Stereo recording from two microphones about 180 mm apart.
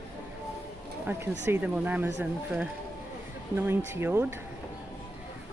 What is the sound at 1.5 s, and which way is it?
Speech, 10° right (ahead or behind).